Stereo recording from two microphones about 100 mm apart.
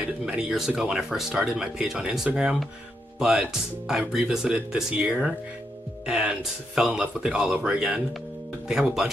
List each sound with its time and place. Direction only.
0.2 s speech: 10° right (ahead or behind)